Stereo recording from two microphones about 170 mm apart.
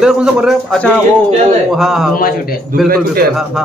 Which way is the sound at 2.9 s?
60° right (ahead or behind).